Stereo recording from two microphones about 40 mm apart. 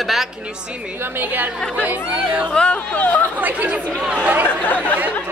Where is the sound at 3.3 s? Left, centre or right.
Right.